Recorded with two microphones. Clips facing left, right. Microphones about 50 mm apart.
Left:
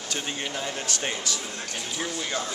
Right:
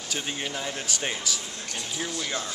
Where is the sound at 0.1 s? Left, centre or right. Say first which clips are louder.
Even; centre.